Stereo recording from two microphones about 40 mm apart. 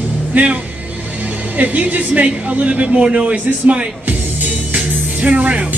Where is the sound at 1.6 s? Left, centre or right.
Right.